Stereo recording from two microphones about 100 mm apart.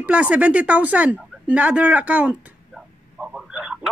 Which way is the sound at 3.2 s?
5° right (ahead or behind).